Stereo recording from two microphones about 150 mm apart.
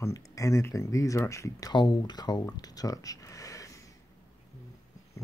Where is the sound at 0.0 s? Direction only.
20° left (ahead or behind).